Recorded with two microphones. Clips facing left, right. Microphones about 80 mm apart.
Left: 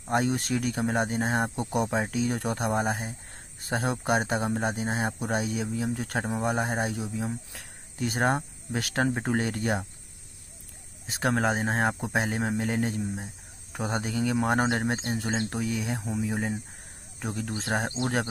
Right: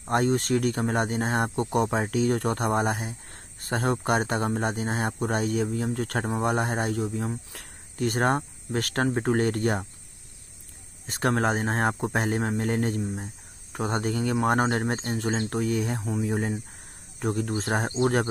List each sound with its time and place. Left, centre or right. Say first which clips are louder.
0.1 s speech: right 3 dB; centre
11.1 s speech: right 1 dB; centre